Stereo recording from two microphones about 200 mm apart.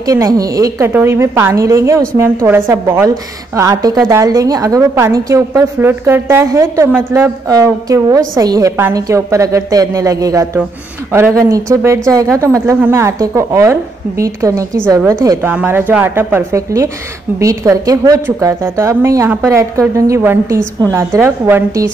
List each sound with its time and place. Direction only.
0.0 s a woman's voice: 20° right (ahead or behind)